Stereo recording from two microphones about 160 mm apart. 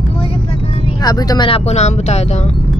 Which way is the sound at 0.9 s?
25° left (ahead or behind).